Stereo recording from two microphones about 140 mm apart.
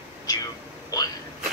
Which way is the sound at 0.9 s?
25° left (ahead or behind).